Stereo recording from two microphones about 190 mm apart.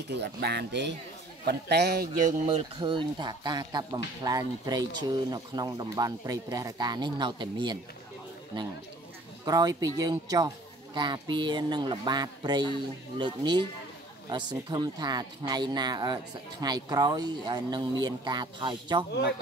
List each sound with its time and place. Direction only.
0.1 s speech: 60° right (ahead or behind)
2.4 s speech: 25° right (ahead or behind)
9.4 s speech: 20° right (ahead or behind)